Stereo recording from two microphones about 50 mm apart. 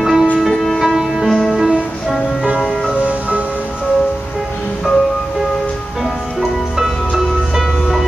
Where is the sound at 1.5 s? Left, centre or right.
Centre.